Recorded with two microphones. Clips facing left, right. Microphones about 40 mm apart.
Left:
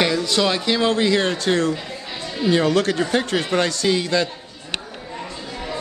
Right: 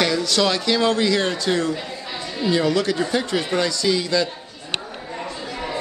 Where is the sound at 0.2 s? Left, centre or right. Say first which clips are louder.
Even; left.